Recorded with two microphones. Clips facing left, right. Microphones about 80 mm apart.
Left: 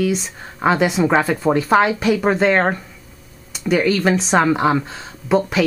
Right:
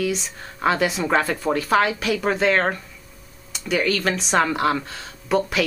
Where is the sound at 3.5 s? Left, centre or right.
Centre.